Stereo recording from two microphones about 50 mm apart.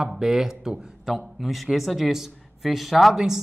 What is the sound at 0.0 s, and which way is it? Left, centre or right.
A man's voice, centre.